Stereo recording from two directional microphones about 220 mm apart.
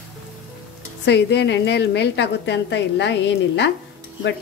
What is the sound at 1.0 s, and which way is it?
A woman's voice, 50° left (ahead or behind).